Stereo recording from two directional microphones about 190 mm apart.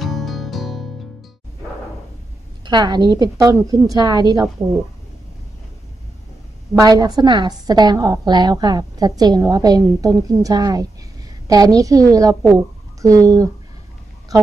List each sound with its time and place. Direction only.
0.0 s music: centre (ahead or behind)
2.6 s a woman's voice: 25° right (ahead or behind)
6.7 s a woman's voice: 20° right (ahead or behind)